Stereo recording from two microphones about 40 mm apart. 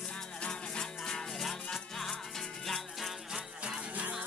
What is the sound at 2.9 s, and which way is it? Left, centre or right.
Music, centre.